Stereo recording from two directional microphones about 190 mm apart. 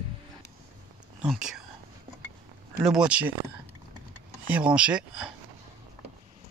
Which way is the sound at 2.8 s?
5° right (ahead or behind).